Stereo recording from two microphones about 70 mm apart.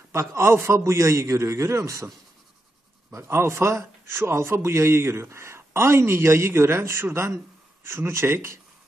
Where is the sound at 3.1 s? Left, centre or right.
Right.